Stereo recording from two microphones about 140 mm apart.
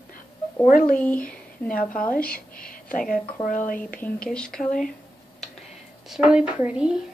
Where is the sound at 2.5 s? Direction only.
80° left.